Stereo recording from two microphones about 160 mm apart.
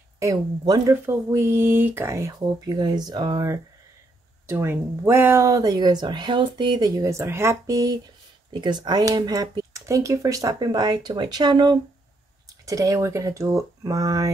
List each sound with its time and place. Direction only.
0.2 s speech: 20° right (ahead or behind)